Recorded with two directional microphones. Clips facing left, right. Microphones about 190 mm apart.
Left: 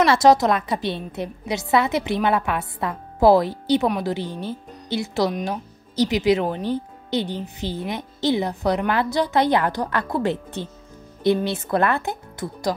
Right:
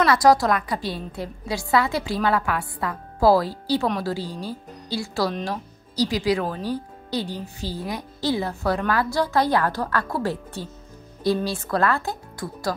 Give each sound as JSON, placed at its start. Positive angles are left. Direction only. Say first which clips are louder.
{"t": 0.0, "sound": "speech", "louder": "left 2 dB", "side_deg": 25}